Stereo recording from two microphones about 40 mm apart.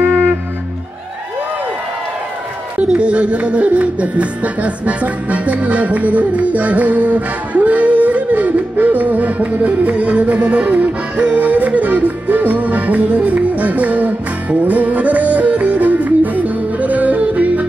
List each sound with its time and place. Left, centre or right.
2.9 s music: right